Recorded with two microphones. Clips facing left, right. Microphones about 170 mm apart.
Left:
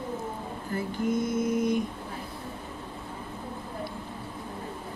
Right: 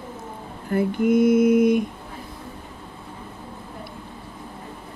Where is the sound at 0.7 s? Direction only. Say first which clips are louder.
Right 9 dB; 65° right (ahead or behind).